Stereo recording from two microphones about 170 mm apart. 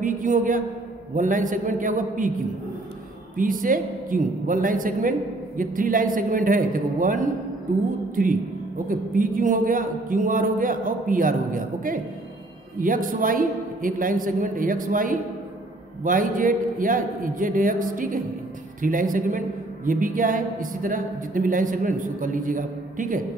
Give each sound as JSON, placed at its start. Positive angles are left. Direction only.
{"t": 0.0, "sound": "a woman's voice", "side_deg": -50}
{"t": 3.3, "sound": "a woman's voice", "side_deg": -55}
{"t": 8.2, "sound": "a woman's voice", "side_deg": -50}